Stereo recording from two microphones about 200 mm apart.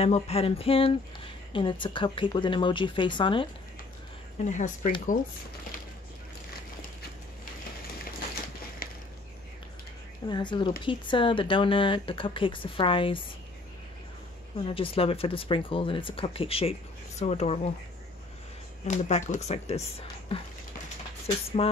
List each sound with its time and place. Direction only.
0.0 s speech: 30° left (ahead or behind)
4.5 s speech: 40° left (ahead or behind)
8.8 s a sound: 45° left (ahead or behind)
10.2 s speech: 25° left (ahead or behind)
14.6 s speech: 25° left (ahead or behind)
18.9 s speech: 35° left (ahead or behind)
21.6 s speech: 30° left (ahead or behind)